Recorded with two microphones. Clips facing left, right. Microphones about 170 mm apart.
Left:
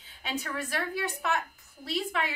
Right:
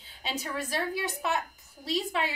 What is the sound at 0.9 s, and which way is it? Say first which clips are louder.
Speech: even; 15° right (ahead or behind).